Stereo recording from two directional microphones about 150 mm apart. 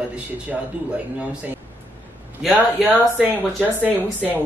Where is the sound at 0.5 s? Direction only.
10° right (ahead or behind).